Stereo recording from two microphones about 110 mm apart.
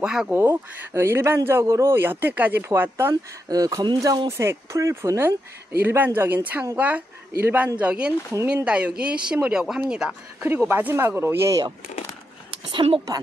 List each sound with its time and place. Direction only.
0.0 s speech: 5° right (ahead or behind)
0.3 s a man's voice: 20° right (ahead or behind)
3.4 s speech: 35° right (ahead or behind)
4.3 s a man's voice: 25° right (ahead or behind)